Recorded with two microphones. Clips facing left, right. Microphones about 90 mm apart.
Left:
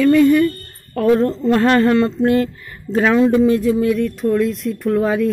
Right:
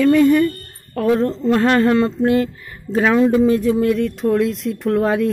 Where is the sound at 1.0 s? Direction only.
Centre (ahead or behind).